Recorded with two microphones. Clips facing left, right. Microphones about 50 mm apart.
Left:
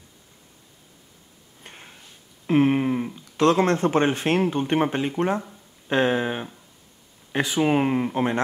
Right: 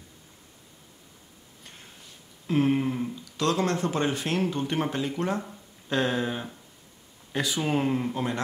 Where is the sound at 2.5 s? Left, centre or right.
Left.